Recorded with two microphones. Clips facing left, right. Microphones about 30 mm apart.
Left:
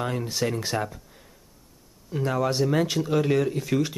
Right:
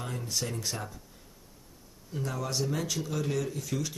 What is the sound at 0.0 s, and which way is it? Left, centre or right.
Speech, left.